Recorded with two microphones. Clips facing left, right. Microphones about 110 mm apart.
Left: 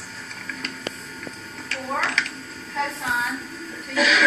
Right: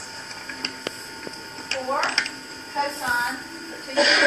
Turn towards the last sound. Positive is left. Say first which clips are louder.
# right 1 dB
turn(degrees=-30)  # may be behind; listen again after turning